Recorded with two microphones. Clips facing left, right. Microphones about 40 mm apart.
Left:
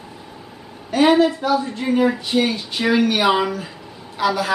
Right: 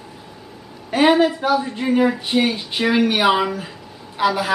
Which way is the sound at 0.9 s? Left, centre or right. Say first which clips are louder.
Even; right.